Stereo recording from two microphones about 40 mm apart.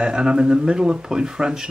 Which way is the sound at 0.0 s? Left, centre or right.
Right.